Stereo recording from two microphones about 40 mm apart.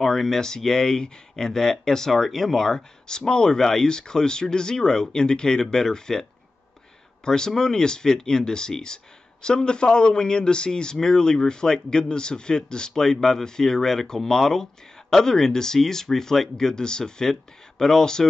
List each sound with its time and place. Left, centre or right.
0.0 s speech: centre
7.2 s speech: centre